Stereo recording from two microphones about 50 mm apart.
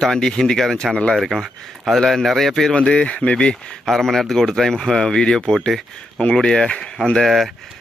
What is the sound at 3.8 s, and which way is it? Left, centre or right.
Speech, centre.